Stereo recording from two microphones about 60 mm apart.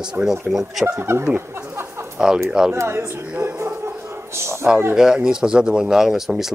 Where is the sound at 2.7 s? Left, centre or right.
Right.